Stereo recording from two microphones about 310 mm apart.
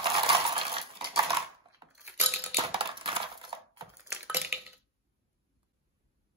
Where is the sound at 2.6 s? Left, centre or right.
Centre.